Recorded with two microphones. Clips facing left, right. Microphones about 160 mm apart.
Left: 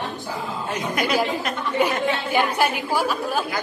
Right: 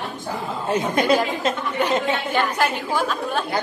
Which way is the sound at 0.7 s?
30° right (ahead or behind).